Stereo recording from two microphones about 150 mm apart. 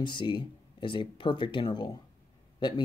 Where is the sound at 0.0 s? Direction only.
30° left (ahead or behind).